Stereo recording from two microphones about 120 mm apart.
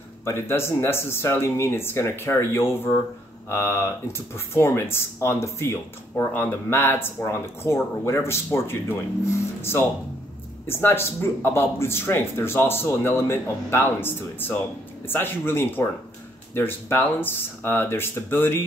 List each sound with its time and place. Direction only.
0.2 s speech: 20° left (ahead or behind)